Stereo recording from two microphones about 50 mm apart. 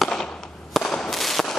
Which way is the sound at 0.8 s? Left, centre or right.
Centre.